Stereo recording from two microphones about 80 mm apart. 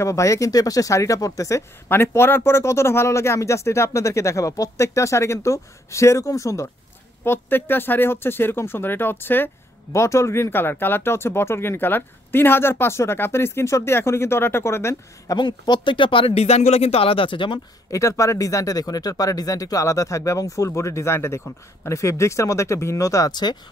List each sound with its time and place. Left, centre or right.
0.0 s speech: left
1.9 s speech: left
7.2 s speech: left
9.9 s speech: left
15.3 s speech: left
17.9 s speech: left
23.3 s speech: left